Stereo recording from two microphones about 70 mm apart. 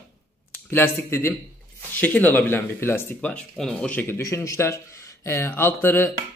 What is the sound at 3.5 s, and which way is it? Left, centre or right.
Speech, centre.